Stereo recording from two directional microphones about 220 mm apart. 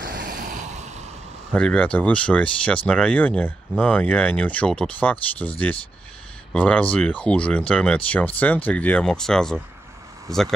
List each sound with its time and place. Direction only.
0.2 s vehicle: 35° right (ahead or behind)
1.5 s speech: 5° left (ahead or behind)